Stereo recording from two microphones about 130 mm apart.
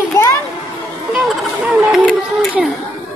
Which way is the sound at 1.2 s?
Centre (ahead or behind).